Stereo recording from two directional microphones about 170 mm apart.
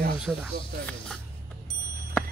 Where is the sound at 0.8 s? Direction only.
5° left (ahead or behind).